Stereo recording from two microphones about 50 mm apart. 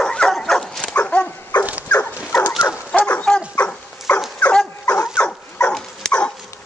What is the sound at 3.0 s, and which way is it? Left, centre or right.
Dog, left.